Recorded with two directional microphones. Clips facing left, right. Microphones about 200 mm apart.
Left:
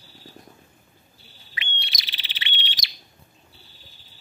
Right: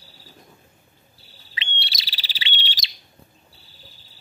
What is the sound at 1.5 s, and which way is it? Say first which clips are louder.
Bird: right 1 dB; 25° right (ahead or behind).